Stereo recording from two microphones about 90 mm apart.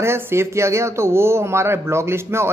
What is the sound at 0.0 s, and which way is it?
A man's voice, 30° right (ahead or behind).